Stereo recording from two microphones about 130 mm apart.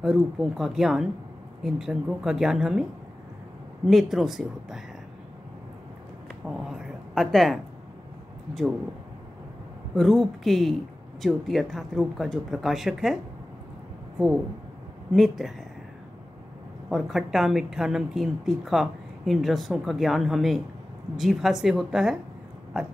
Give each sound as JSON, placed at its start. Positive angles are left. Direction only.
{"t": 0.0, "sound": "a woman's voice", "side_deg": -5}
{"t": 3.8, "sound": "a woman's voice", "side_deg": 0}
{"t": 6.4, "sound": "a woman's voice", "side_deg": -5}
{"t": 9.9, "sound": "a woman's voice", "side_deg": 0}
{"t": 15.1, "sound": "a woman's voice", "side_deg": 0}
{"t": 16.9, "sound": "a woman's voice", "side_deg": 0}